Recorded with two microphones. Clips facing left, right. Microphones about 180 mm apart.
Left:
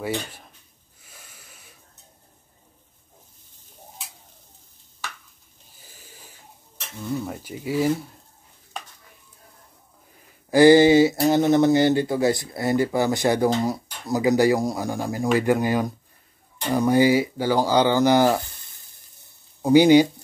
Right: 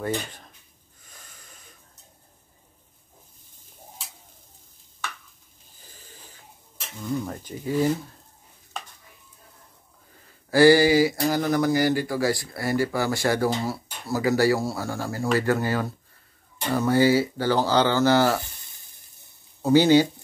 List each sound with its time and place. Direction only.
0.0 s speech: 5° left (ahead or behind)
1.0 s wheeze: 5° left (ahead or behind)
7.0 s speech: 5° left (ahead or behind)
10.5 s speech: 20° left (ahead or behind)
19.6 s speech: 15° left (ahead or behind)